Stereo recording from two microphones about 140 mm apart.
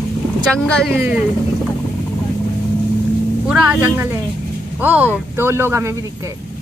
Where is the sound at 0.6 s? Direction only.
5° left (ahead or behind).